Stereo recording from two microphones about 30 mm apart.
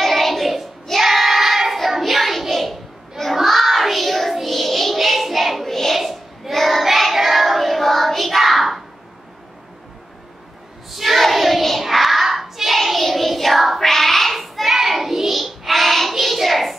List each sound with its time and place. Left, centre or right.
0.0 s child singing: centre
5.9 s a sound: centre
6.5 s child singing: centre
10.9 s child singing: centre
13.7 s child singing: centre